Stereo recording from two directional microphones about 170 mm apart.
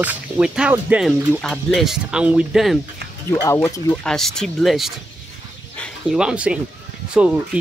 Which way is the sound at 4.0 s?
5° left (ahead or behind).